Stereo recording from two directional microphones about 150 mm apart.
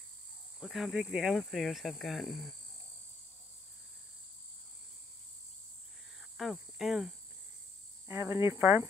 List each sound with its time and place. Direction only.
0.6 s speech: centre (ahead or behind)
6.3 s insect: centre (ahead or behind)
8.1 s speech: 20° right (ahead or behind)